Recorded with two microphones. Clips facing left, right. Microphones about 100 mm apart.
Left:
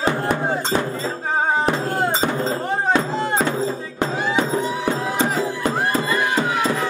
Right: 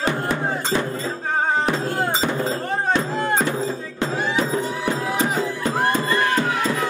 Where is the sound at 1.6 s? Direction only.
40° left (ahead or behind).